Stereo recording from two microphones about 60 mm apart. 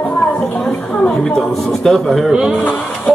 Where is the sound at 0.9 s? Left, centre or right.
Centre.